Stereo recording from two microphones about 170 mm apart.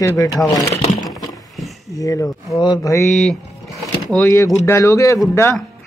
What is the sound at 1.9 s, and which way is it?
Speech, 20° left (ahead or behind).